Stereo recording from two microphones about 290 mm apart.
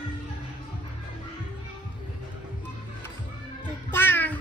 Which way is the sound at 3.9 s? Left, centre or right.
Centre.